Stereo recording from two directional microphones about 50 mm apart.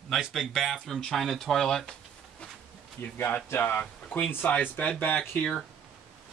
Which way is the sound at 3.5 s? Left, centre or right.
Left.